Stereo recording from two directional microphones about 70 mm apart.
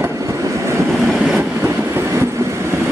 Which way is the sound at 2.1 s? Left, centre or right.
Right.